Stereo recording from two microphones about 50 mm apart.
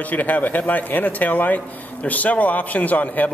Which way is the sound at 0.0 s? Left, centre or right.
Left.